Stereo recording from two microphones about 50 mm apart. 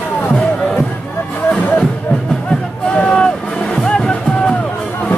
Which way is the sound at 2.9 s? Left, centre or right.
Left.